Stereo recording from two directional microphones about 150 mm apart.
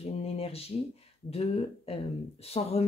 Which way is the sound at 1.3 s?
40° left (ahead or behind).